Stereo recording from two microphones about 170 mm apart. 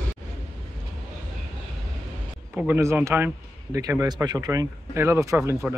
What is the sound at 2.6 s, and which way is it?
Speech, 15° right (ahead or behind).